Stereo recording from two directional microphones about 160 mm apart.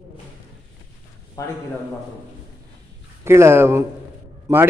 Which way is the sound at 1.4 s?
20° left (ahead or behind).